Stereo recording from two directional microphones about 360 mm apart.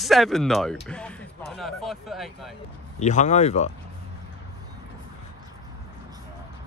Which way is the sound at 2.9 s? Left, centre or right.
Centre.